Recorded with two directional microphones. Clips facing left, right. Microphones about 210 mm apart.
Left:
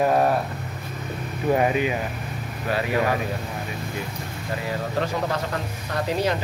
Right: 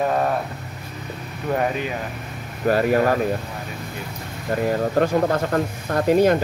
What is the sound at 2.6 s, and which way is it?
Speech, 45° right (ahead or behind).